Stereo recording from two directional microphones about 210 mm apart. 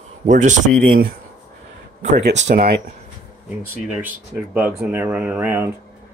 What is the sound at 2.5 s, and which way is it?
Speech, 45° right (ahead or behind).